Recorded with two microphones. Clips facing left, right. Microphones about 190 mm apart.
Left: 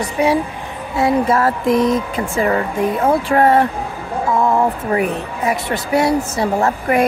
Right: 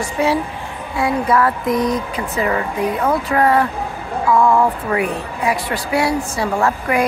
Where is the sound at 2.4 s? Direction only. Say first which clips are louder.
Left 2 dB; 45° left (ahead or behind).